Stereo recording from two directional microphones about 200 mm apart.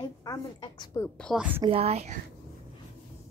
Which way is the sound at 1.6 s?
30° right (ahead or behind).